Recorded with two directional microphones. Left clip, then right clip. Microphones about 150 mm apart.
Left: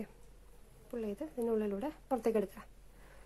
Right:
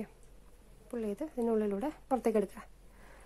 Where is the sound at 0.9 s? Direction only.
15° right (ahead or behind).